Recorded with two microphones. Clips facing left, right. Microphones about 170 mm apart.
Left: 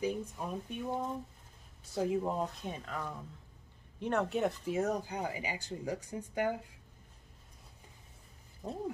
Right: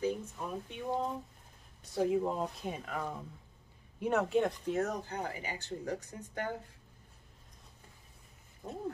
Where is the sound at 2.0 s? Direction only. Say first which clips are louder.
Right 2 dB; centre (ahead or behind).